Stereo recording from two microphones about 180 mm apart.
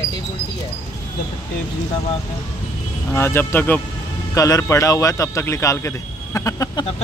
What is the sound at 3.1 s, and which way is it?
Speech, 15° left (ahead or behind).